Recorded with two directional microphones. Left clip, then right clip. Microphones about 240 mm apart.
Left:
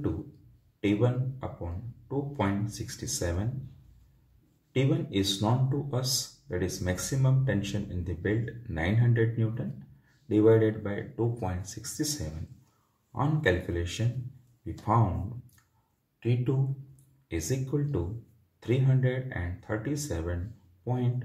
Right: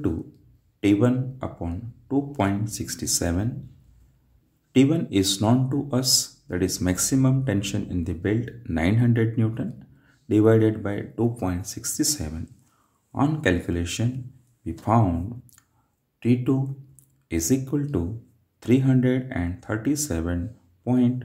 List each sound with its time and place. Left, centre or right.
0.7 s a man's voice: right
4.7 s speech: right
16.2 s speech: right